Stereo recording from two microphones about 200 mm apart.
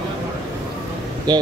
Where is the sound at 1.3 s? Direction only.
20° right (ahead or behind).